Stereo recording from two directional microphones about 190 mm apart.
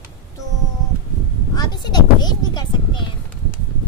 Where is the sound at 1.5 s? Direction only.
20° left (ahead or behind).